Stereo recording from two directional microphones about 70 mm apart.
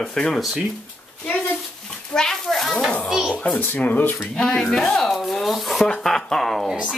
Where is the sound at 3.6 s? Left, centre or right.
Left.